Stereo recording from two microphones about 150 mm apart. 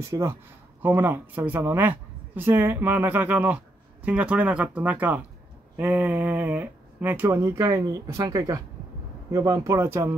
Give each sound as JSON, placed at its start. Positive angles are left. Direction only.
{"t": 0.0, "sound": "speech", "side_deg": -20}